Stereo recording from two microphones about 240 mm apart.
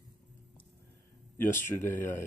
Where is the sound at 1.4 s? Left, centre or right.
Centre.